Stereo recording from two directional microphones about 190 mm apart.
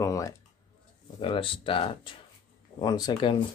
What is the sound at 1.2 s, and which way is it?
Speech, 30° left (ahead or behind).